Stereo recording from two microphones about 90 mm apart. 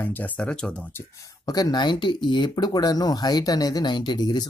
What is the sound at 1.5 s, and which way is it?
Speech, 50° left (ahead or behind).